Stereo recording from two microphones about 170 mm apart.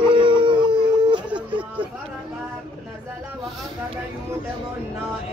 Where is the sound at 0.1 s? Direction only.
30° right (ahead or behind).